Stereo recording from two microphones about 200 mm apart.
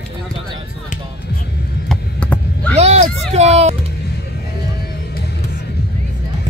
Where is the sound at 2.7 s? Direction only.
30° right (ahead or behind).